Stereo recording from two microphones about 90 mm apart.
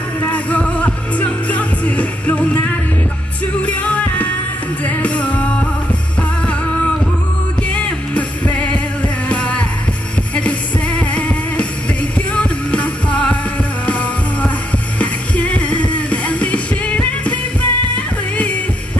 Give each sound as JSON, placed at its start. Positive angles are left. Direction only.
{"t": 0.2, "sound": "music", "side_deg": 15}
{"t": 7.7, "sound": "music", "side_deg": 15}